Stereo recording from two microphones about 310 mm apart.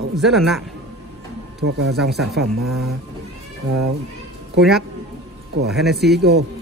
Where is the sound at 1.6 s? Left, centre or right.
Right.